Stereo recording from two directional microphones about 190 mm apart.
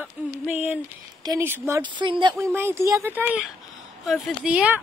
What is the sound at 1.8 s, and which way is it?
Speech, 25° right (ahead or behind).